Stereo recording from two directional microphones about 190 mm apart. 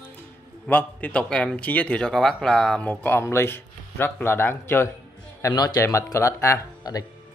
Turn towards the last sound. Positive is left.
turn(degrees=20)  # may be behind; listen again after turning